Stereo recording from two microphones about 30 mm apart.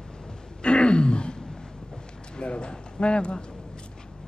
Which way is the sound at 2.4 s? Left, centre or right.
Left.